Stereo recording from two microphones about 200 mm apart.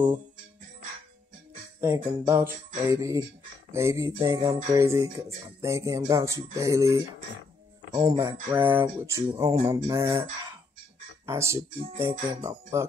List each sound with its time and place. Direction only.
2.0 s speech: 15° right (ahead or behind)
11.2 s speech: 15° right (ahead or behind)